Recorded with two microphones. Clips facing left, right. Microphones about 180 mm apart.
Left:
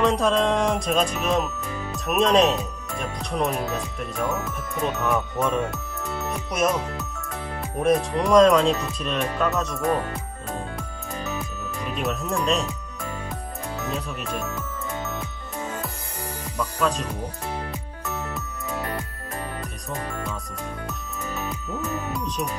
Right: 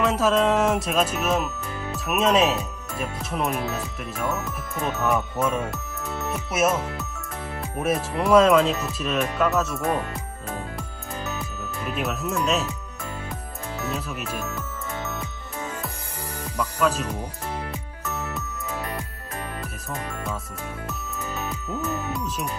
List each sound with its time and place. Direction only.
0.0 s speech: 5° right (ahead or behind)
5.0 s speech: centre (ahead or behind)
11.2 s music: 5° right (ahead or behind)
13.8 s music: 5° right (ahead or behind)
16.8 s speech: 5° right (ahead or behind)
22.1 s speech: centre (ahead or behind)